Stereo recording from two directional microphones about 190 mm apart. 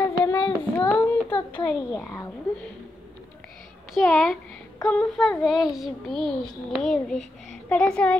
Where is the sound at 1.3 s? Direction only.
25° left (ahead or behind).